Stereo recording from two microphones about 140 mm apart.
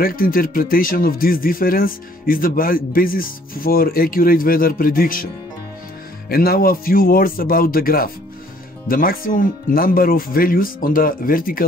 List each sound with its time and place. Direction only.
0.0 s speech: 90° left